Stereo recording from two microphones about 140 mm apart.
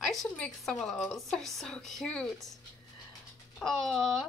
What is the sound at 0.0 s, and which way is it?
A woman's voice, centre (ahead or behind).